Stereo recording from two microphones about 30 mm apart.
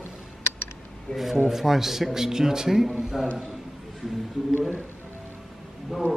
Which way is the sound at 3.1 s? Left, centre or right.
Centre.